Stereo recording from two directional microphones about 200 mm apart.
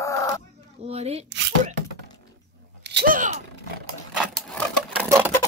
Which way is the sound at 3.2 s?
40° right (ahead or behind).